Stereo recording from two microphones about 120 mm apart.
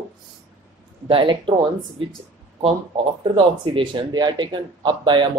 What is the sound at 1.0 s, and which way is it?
Speech, 45° right (ahead or behind).